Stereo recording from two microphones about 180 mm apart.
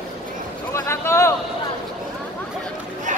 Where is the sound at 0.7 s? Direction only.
15° left (ahead or behind).